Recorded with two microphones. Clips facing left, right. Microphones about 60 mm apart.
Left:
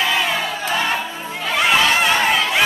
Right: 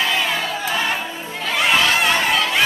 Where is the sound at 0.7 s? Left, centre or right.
Centre.